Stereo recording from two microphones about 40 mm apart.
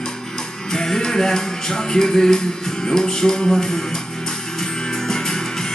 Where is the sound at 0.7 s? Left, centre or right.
Centre.